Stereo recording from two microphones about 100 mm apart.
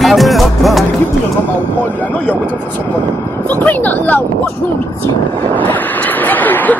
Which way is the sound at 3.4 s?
15° left (ahead or behind).